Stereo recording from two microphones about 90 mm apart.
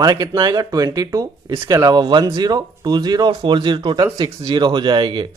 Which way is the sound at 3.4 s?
65° right (ahead or behind).